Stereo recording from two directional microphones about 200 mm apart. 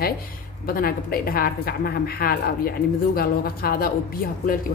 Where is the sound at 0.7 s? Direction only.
45° left (ahead or behind).